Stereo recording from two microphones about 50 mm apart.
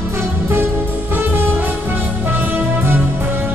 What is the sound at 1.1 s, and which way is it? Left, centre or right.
Music, right.